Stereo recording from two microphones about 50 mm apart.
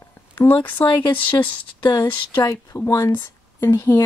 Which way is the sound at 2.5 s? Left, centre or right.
Left.